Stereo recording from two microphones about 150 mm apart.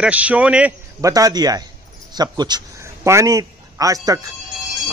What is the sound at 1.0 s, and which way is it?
A man's voice, 25° right (ahead or behind).